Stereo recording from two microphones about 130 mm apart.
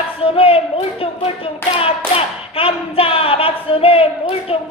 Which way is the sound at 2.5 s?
45° left (ahead or behind).